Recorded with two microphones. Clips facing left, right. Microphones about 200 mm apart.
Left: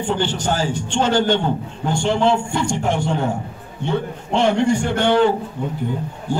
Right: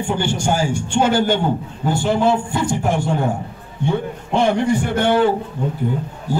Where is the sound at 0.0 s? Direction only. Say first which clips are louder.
Right 1 dB; 10° right (ahead or behind).